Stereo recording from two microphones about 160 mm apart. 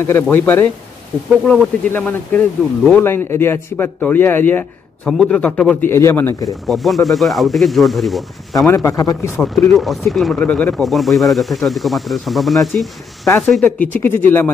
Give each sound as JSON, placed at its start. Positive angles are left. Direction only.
{"t": 0.0, "sound": "speech", "side_deg": 15}
{"t": 6.6, "sound": "speech", "side_deg": 0}
{"t": 8.6, "sound": "a man's voice", "side_deg": 20}
{"t": 9.4, "sound": "speech", "side_deg": 0}
{"t": 13.7, "sound": "speech", "side_deg": 10}